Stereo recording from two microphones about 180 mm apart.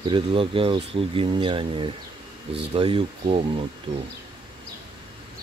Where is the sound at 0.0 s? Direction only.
30° right (ahead or behind).